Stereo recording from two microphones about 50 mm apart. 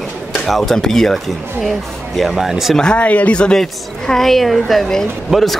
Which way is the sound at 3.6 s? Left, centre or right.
Centre.